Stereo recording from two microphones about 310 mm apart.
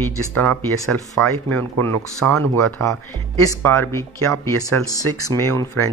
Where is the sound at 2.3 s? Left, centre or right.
Right.